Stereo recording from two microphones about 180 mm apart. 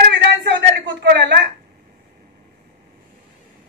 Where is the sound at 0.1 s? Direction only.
80° right.